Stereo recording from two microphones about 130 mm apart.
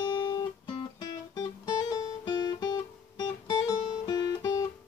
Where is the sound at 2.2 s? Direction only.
30° left (ahead or behind).